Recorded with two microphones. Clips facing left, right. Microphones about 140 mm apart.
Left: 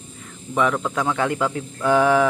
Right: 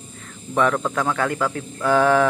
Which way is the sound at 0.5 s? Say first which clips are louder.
Right 1 dB; 10° left (ahead or behind).